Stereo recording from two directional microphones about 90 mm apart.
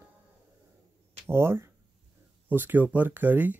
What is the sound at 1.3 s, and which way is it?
Speech, 30° right (ahead or behind).